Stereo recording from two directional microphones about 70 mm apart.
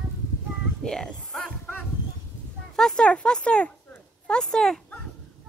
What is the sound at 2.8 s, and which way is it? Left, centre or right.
Speech, centre.